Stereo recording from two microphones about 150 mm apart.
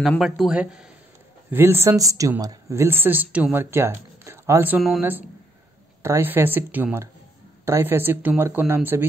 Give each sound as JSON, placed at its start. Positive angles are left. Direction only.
{"t": 0.2, "sound": "speech", "side_deg": -5}
{"t": 6.0, "sound": "speech", "side_deg": -15}